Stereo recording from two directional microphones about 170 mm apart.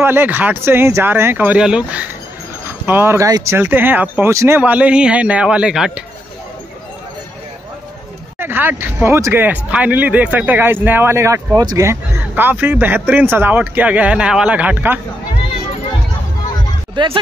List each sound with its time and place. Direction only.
0.0 s speech: 15° right (ahead or behind)
8.4 s speech: 10° right (ahead or behind)
16.9 s speech: 25° right (ahead or behind)